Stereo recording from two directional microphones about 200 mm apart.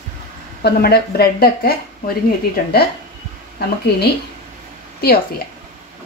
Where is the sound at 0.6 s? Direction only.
50° left (ahead or behind).